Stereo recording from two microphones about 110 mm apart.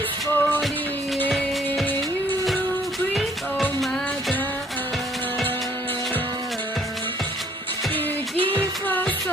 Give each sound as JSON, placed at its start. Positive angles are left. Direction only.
{"t": 0.3, "sound": "music", "side_deg": 15}
{"t": 8.8, "sound": "music", "side_deg": 15}